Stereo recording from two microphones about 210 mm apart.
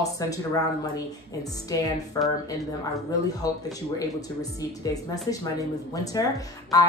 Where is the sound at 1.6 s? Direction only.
15° left (ahead or behind).